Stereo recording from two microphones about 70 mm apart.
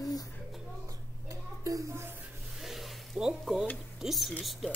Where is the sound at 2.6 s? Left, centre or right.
Centre.